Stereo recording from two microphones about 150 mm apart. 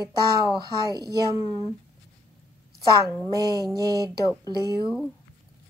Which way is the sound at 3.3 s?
25° right (ahead or behind).